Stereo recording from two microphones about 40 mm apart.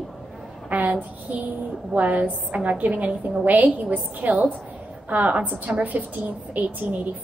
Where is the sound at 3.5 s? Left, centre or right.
Right.